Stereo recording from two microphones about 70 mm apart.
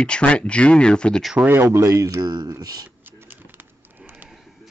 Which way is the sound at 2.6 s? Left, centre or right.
Right.